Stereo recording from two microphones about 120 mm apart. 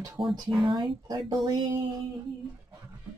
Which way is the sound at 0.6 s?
40° right (ahead or behind).